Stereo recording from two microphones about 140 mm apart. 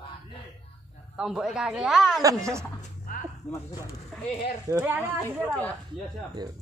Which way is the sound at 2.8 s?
80° left.